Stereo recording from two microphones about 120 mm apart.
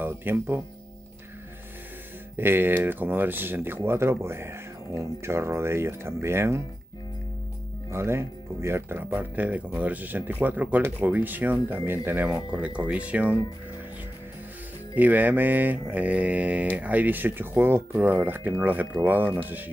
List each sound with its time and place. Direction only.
0.0 s speech: 20° right (ahead or behind)
2.3 s speech: 20° right (ahead or behind)
7.9 s speech: 20° right (ahead or behind)
15.0 s speech: 15° right (ahead or behind)